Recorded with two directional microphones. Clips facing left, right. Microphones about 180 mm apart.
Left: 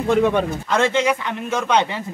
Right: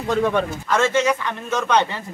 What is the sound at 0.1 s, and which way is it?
Speech, 15° left (ahead or behind).